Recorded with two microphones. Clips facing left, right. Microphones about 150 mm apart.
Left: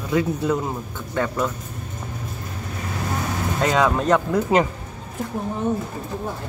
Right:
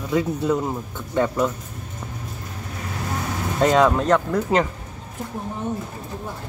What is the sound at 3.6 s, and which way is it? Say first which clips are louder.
Speech: right 3 dB; centre (ahead or behind).